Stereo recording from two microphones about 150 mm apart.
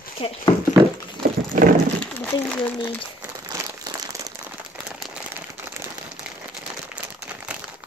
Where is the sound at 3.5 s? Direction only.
25° right (ahead or behind).